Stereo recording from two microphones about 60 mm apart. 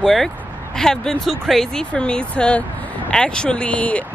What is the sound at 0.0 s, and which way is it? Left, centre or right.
Speech, centre.